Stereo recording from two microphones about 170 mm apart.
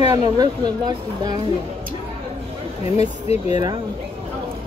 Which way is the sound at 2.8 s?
40° left (ahead or behind).